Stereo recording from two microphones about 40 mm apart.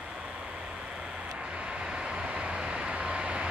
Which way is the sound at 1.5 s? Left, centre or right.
Right.